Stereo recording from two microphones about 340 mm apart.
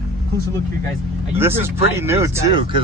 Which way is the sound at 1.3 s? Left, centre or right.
Centre.